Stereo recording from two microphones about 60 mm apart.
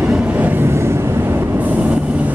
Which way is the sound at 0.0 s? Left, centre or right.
Centre.